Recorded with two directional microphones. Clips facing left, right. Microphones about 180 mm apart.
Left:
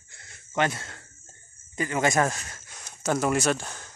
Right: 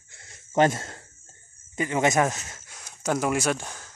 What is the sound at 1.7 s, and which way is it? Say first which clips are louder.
Speech: right 2 dB; 20° right (ahead or behind).